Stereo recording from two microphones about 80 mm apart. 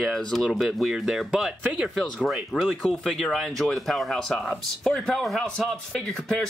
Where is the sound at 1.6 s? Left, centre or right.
Centre.